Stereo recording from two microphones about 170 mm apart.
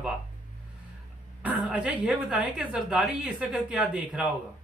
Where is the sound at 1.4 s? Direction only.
10° right (ahead or behind).